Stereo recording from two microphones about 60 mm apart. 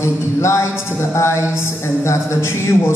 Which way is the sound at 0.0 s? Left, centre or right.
Left.